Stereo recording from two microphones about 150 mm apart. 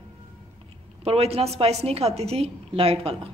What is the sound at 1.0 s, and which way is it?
A woman's voice, 40° right (ahead or behind).